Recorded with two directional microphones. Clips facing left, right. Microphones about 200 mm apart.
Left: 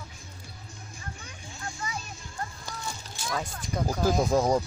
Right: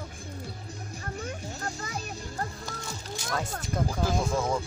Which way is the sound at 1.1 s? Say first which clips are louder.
Right 9 dB; 40° right (ahead or behind).